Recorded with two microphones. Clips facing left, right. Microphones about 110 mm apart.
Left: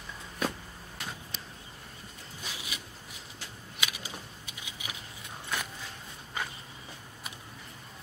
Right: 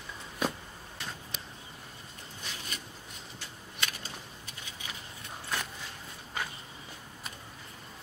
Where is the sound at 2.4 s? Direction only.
10° left (ahead or behind).